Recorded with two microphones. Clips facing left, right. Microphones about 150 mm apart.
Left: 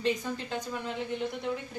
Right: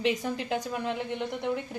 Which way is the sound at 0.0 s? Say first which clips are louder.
Right 2 dB; 70° right (ahead or behind).